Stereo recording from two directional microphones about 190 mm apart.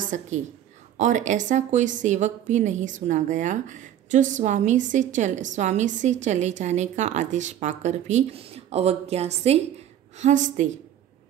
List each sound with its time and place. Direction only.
0.0 s a woman's voice: 40° right (ahead or behind)